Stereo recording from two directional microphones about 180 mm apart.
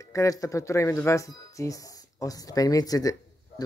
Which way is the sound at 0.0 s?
15° left (ahead or behind).